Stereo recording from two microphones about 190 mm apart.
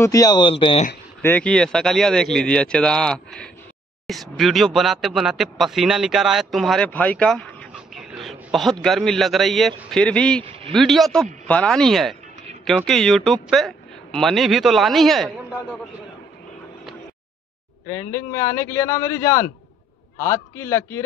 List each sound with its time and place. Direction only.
0.0 s speech: 20° left (ahead or behind)
1.2 s a man's voice: 10° left (ahead or behind)
17.8 s a man's voice: 15° left (ahead or behind)